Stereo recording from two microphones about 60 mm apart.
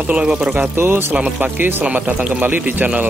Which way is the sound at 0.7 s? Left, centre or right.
Right.